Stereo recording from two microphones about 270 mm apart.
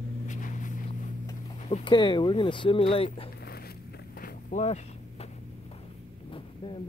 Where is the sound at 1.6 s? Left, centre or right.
Left.